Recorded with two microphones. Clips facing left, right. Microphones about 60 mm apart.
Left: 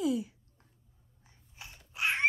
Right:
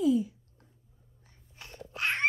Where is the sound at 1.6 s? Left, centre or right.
Centre.